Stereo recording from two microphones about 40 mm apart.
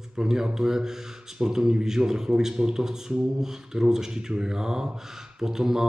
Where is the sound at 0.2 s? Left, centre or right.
Centre.